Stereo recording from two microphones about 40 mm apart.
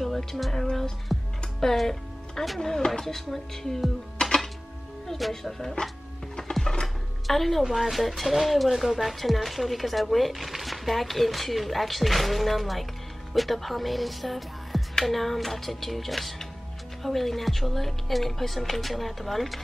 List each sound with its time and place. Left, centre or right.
0.0 s speech: centre
1.1 s music: centre
1.6 s speech: centre
6.6 s a sound: centre
7.2 s speech: centre